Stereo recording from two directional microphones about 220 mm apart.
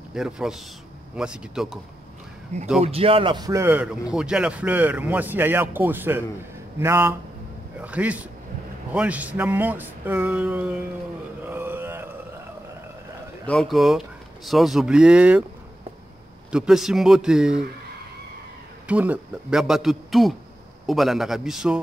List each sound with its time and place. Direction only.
0.1 s speech: centre (ahead or behind)
2.8 s speech: 25° right (ahead or behind); by 10.9 s 5° right (ahead or behind)
11.4 s mantra: 10° right (ahead or behind)
13.5 s speech: centre (ahead or behind)
16.5 s speech: centre (ahead or behind)
18.9 s speech: 5° right (ahead or behind)